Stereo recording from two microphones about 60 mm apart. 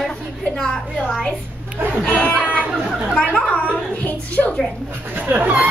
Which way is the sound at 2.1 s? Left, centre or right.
Left.